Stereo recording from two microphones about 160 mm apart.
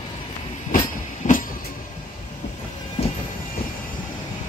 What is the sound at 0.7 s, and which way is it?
Train, 55° left (ahead or behind).